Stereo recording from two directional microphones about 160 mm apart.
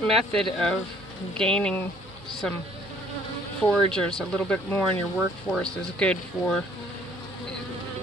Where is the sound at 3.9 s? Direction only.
5° left (ahead or behind).